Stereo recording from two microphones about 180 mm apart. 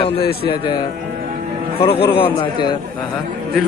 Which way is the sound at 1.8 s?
30° left (ahead or behind).